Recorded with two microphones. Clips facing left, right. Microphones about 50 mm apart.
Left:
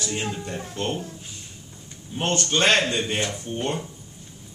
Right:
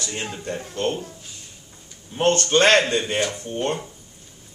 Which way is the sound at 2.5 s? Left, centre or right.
Right.